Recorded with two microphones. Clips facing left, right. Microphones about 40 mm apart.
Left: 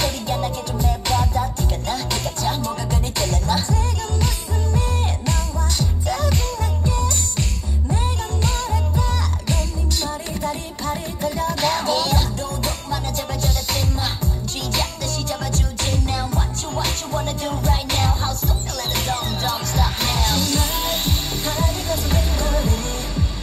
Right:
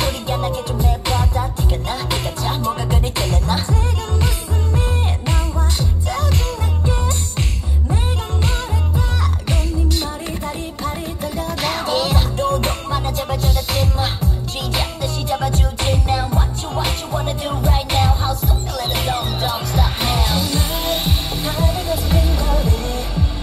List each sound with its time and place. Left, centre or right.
0.0 s music: centre
6.0 s music: centre
6.9 s music: right
8.5 s music: centre
12.4 s music: right
12.9 s music: right; by 23.0 s centre